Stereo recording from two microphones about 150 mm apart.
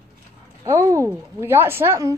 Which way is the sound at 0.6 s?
20° right (ahead or behind).